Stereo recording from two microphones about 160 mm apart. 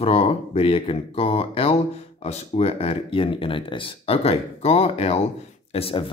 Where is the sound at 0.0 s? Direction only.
40° left (ahead or behind).